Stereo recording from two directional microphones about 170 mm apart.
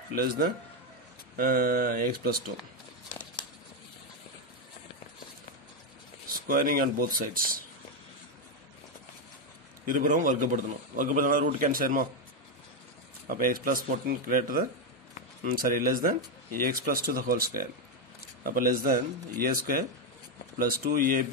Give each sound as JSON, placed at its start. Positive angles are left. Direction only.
{"t": 0.1, "sound": "speech", "side_deg": -60}
{"t": 6.2, "sound": "speech", "side_deg": -55}
{"t": 9.8, "sound": "a man's voice", "side_deg": -50}
{"t": 13.3, "sound": "speech", "side_deg": -55}